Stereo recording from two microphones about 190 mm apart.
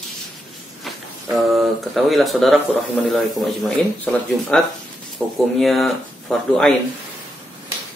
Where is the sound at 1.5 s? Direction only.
Centre (ahead or behind).